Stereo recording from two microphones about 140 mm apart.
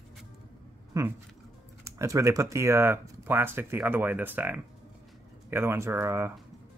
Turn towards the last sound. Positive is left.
turn(degrees=-20)  # may be behind; listen again after turning